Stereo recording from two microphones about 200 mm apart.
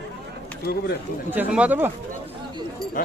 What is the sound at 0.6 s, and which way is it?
Speech, 55° left (ahead or behind).